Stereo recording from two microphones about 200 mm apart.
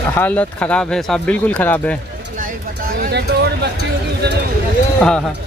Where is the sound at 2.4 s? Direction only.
45° right (ahead or behind).